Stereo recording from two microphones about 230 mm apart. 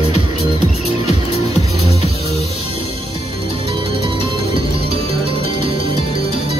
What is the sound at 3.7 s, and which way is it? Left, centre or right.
Music, right.